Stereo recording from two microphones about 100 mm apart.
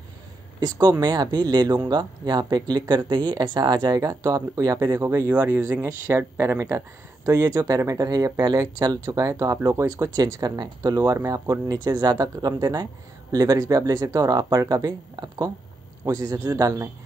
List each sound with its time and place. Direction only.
0.6 s speech: 45° right (ahead or behind); by 5.2 s 30° right (ahead or behind)
5.3 s speech: 15° right (ahead or behind)
10.1 s speech: 40° right (ahead or behind)